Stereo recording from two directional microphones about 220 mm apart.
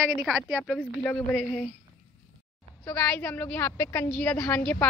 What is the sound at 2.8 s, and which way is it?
A woman's voice, 5° left (ahead or behind).